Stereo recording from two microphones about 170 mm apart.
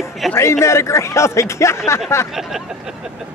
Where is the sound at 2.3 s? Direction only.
Centre (ahead or behind).